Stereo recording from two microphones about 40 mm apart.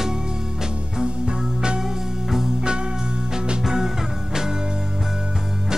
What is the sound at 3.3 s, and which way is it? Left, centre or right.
Music, centre.